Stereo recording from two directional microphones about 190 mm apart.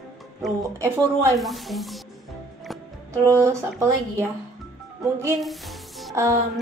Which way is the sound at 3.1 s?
15° right (ahead or behind).